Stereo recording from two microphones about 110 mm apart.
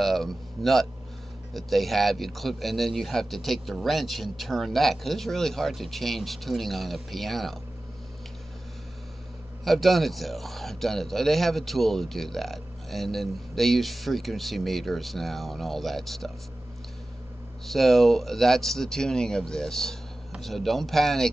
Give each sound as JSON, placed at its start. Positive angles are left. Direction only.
{"t": 0.0, "sound": "speech", "side_deg": 0}
{"t": 9.7, "sound": "speech", "side_deg": 0}
{"t": 17.6, "sound": "speech", "side_deg": 0}